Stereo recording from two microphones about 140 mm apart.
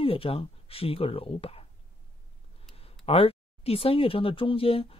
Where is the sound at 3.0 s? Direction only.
45° left (ahead or behind).